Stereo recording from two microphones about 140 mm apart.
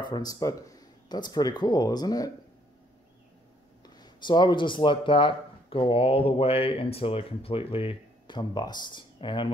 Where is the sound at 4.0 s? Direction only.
35° left (ahead or behind).